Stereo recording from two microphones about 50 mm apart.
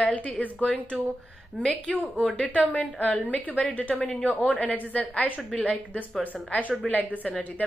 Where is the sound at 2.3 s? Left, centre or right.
Left.